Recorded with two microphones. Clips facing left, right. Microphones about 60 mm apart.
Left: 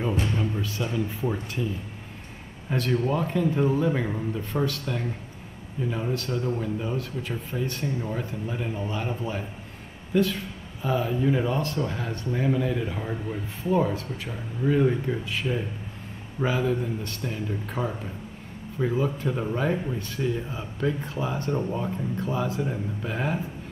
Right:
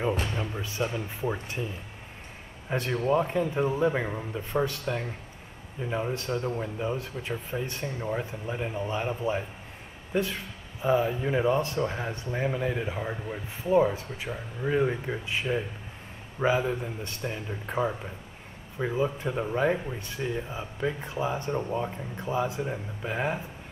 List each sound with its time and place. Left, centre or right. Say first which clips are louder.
0.6 s a man's voice: left 2 dB; right
2.7 s a man's voice: even; right
22.1 s speech: right 1 dB; centre